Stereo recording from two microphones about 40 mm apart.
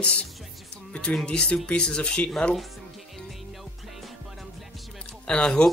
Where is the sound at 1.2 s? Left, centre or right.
Left.